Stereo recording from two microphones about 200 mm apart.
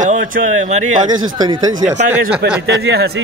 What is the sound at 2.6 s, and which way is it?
Speech, 55° right (ahead or behind).